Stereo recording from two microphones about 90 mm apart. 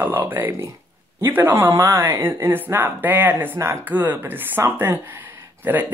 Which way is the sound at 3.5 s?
35° right (ahead or behind).